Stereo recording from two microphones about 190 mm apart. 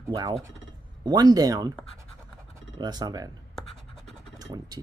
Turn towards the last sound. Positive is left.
turn(degrees=-20)  # may be behind; listen again after turning